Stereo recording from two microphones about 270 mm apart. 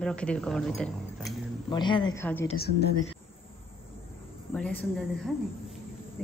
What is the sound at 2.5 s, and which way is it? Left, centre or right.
Speech, left.